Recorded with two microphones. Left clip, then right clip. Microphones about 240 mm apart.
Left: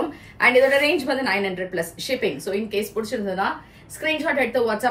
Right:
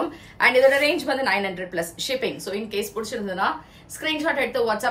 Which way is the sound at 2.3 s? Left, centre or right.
Right.